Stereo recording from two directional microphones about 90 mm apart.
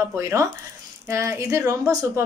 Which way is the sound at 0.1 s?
35° right (ahead or behind).